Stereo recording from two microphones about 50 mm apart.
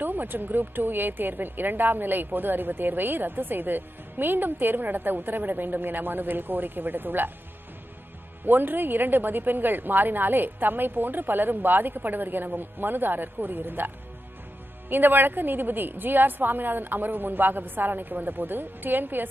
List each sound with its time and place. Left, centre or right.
0.0 s a woman's voice: right
8.5 s a woman's voice: right